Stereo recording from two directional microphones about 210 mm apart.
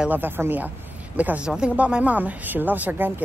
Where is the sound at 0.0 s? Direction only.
10° right (ahead or behind).